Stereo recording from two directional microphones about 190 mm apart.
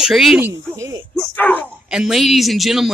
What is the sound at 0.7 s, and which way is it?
Speech, 15° right (ahead or behind).